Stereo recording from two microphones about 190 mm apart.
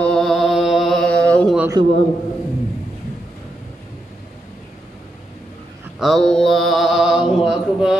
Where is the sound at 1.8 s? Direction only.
25° right (ahead or behind).